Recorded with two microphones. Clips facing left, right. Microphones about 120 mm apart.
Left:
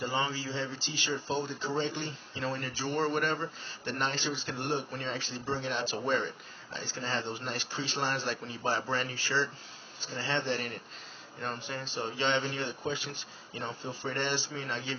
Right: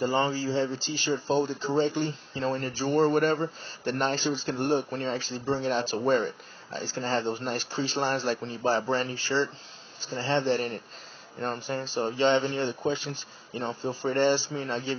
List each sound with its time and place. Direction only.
0.0 s speech: 40° right (ahead or behind)